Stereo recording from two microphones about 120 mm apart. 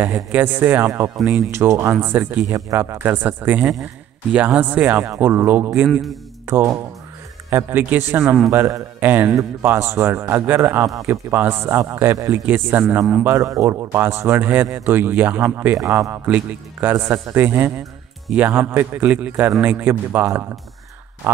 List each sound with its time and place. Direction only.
0.0 s speech: 15° right (ahead or behind)
5.9 s a man's voice: centre (ahead or behind)
6.4 s speech: 20° right (ahead or behind)
13.2 s speech: 25° right (ahead or behind)